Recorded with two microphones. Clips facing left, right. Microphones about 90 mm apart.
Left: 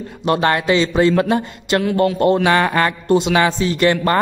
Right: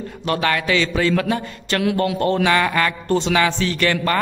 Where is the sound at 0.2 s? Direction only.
30° left (ahead or behind).